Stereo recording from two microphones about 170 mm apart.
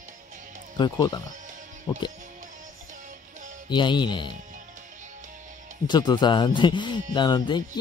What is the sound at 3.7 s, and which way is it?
Speech, 25° left (ahead or behind).